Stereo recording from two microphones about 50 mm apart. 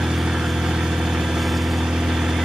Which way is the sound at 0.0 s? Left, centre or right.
Centre.